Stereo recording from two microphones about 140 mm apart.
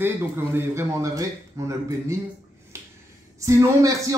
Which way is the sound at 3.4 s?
20° right (ahead or behind).